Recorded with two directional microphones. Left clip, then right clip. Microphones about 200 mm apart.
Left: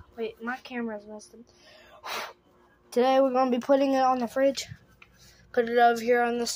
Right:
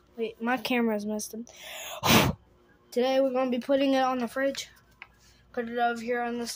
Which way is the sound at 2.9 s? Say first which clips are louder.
Left 3 dB; 10° left (ahead or behind).